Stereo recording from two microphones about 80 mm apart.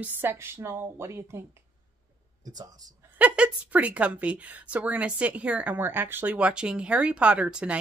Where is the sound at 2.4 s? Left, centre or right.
Right.